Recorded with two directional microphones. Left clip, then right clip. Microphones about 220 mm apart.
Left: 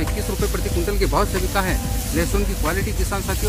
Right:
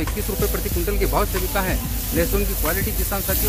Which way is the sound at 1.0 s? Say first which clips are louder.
Left 1 dB; 5° right (ahead or behind).